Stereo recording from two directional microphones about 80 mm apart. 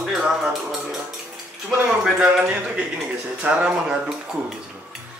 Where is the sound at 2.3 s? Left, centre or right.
Centre.